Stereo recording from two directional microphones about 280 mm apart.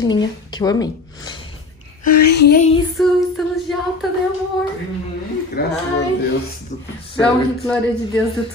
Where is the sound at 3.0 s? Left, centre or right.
Centre.